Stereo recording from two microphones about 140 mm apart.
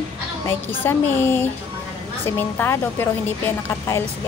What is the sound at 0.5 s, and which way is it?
A woman's voice, 15° left (ahead or behind).